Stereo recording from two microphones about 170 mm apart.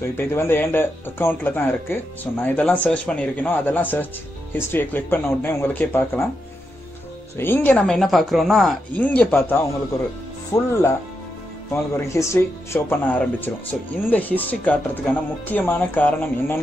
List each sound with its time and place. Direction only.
0.2 s speech: 15° left (ahead or behind)
7.3 s speech: 10° left (ahead or behind)